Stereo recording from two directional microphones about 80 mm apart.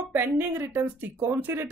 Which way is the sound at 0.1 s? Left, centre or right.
Right.